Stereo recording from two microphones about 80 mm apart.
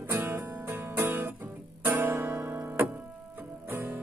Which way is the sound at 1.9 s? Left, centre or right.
Right.